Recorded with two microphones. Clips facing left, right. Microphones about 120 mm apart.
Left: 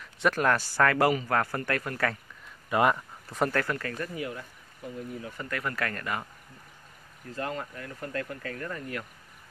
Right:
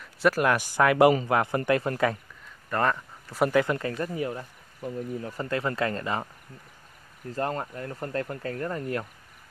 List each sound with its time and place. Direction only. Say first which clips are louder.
0.0 s speech: right 3 dB; 5° right (ahead or behind); by 2.0 s 25° right (ahead or behind)
2.7 s speech: left 2 dB; 10° left (ahead or behind)
3.3 s speech: right 5 dB; 10° right (ahead or behind)
4.0 s speech: right 4 dB; 30° right (ahead or behind)
5.5 s speech: right 5 dB; 25° right (ahead or behind)
7.3 s speech: right 4 dB; 35° right (ahead or behind)